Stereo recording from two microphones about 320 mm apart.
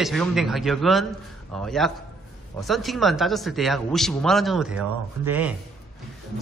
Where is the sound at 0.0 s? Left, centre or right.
Centre.